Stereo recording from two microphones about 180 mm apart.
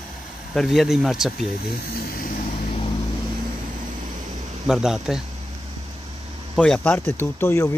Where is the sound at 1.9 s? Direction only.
55° left (ahead or behind).